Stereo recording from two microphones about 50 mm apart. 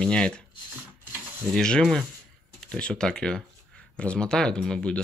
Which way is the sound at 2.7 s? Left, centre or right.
Centre.